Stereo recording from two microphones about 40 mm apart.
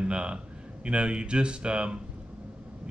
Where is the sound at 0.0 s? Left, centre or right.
Right.